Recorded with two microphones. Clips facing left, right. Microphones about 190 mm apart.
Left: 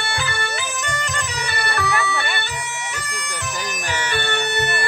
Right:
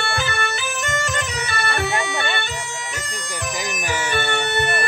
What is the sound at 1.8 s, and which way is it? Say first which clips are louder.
Bagpipes: left 1 dB; 25° right (ahead or behind).